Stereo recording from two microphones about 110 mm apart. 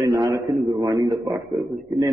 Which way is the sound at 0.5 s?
Centre (ahead or behind).